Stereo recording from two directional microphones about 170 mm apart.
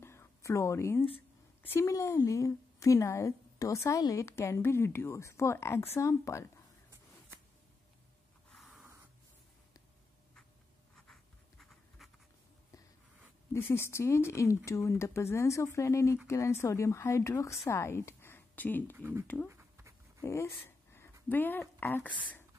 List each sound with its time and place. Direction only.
0.0 s a sound: 15° left (ahead or behind)
1.6 s a woman's voice: 15° left (ahead or behind)
8.5 s snort: centre (ahead or behind)
11.0 s writing: 5° left (ahead or behind)
13.5 s a woman's voice: 15° left (ahead or behind)
18.9 s speech: 15° right (ahead or behind)
19.4 s dog: 15° right (ahead or behind)
20.2 s speech: 15° left (ahead or behind)